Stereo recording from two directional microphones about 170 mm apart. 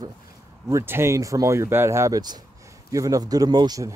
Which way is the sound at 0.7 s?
15° right (ahead or behind).